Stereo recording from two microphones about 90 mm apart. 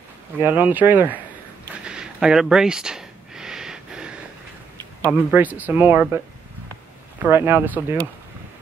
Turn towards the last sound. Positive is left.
turn(degrees=-25)  # may be behind; listen again after turning